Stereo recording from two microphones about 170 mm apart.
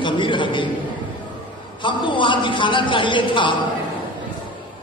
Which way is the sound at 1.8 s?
30° left (ahead or behind).